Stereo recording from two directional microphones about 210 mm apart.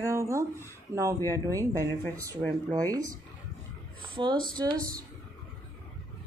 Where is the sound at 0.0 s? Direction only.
15° right (ahead or behind).